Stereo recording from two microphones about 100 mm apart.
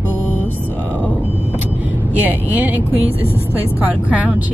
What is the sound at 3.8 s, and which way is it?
Speech, 15° right (ahead or behind).